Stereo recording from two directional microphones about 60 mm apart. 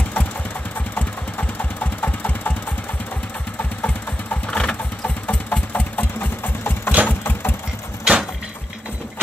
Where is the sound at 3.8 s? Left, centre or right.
Left.